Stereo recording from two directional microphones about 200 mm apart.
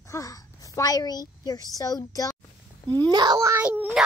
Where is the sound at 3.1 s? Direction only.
20° right (ahead or behind); by 4.0 s 5° right (ahead or behind).